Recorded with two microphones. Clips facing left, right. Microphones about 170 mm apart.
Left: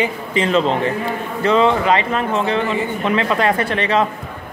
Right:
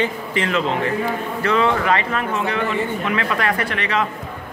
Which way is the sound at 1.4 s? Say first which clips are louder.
Left 4 dB; 20° left (ahead or behind).